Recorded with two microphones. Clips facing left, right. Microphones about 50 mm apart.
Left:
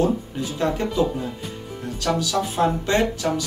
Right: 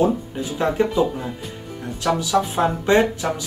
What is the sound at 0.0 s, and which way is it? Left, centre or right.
Speech, centre.